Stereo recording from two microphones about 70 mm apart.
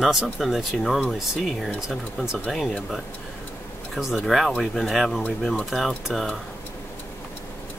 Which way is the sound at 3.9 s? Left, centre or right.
Centre.